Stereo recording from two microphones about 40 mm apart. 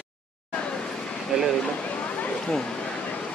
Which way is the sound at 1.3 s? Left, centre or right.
Right.